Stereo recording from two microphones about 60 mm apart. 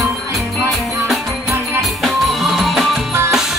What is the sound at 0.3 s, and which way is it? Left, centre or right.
Music, centre.